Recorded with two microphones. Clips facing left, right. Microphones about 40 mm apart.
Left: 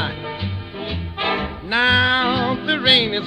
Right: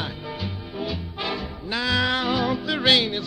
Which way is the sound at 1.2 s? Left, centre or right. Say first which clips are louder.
Left 9 dB; left.